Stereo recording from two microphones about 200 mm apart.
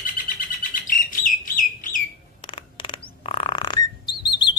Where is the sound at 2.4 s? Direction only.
25° left (ahead or behind).